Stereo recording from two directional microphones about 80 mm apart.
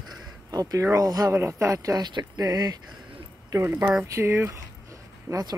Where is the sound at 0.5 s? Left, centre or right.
Right.